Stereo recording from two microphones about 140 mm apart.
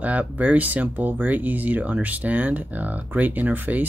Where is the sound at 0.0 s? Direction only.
10° right (ahead or behind).